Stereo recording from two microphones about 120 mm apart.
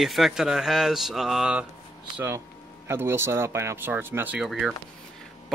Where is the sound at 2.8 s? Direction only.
20° right (ahead or behind).